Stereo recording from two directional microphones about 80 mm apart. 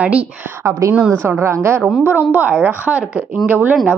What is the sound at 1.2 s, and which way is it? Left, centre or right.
A woman's voice, right.